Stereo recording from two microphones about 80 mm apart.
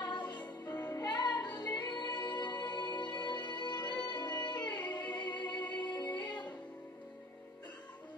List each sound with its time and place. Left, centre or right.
0.0 s music: left